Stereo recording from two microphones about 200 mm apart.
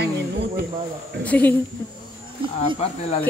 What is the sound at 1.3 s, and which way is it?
Speech, 10° left (ahead or behind).